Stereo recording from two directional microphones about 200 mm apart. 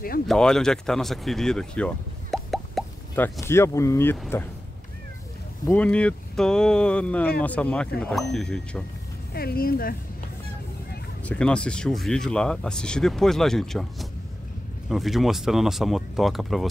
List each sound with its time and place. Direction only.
0.3 s speech: 5° left (ahead or behind)
3.3 s speech: 15° left (ahead or behind)
5.7 s speech: 5° left (ahead or behind)
9.3 s speech: 50° left (ahead or behind)
11.2 s speech: 5° left (ahead or behind)